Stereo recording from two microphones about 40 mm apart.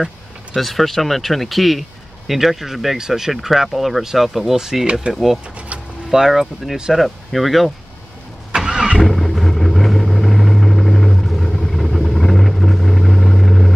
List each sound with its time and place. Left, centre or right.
0.6 s speech: centre
8.5 s vehicle: right
9.0 s vehicle: centre